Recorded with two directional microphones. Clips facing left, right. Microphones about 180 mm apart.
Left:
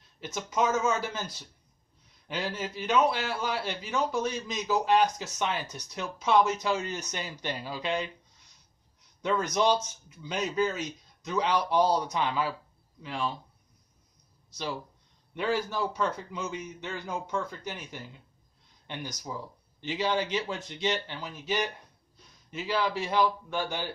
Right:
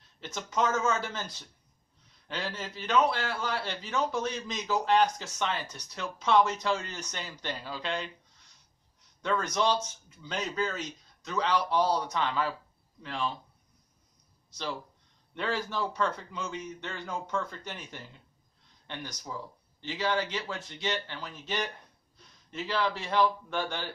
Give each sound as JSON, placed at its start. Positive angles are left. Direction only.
{"t": 0.2, "sound": "a man's voice", "side_deg": 10}
{"t": 2.2, "sound": "a man's voice", "side_deg": 10}
{"t": 9.2, "sound": "a man's voice", "side_deg": 10}
{"t": 15.3, "sound": "a man's voice", "side_deg": 10}